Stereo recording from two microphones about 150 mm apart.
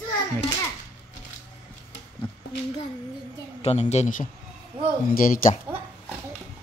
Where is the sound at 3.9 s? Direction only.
55° left (ahead or behind).